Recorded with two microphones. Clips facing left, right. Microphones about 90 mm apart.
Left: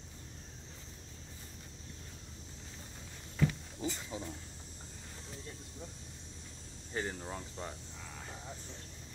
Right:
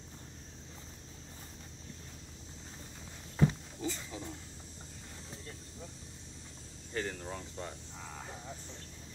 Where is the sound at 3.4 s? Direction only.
30° right (ahead or behind).